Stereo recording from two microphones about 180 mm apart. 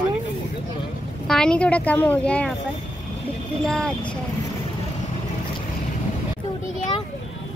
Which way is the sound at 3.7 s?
5° left (ahead or behind).